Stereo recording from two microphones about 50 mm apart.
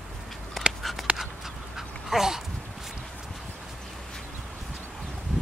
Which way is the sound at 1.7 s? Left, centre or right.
Centre.